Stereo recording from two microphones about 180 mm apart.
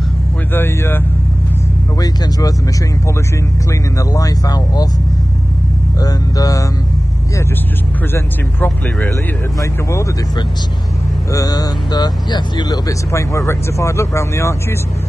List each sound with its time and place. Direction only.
0.5 s speech: 15° left (ahead or behind)
4.1 s speech: 20° left (ahead or behind)
5.9 s speech: 20° left (ahead or behind)
8.1 s speech: 10° left (ahead or behind)
11.3 s speech: 20° left (ahead or behind)